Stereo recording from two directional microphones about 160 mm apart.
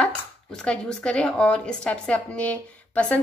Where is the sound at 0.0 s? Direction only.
5° left (ahead or behind).